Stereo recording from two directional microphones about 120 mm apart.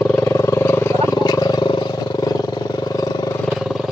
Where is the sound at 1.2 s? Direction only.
35° left (ahead or behind).